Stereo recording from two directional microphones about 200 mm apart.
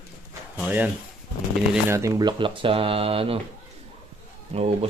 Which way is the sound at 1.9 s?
20° right (ahead or behind).